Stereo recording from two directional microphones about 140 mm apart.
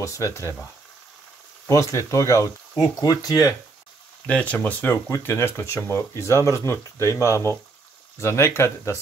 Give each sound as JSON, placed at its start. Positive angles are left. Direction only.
{"t": 0.0, "sound": "speech", "side_deg": 20}
{"t": 1.7, "sound": "speech", "side_deg": 20}
{"t": 4.3, "sound": "speech", "side_deg": 10}